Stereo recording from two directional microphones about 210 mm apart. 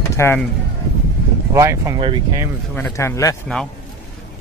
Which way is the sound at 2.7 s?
10° left (ahead or behind).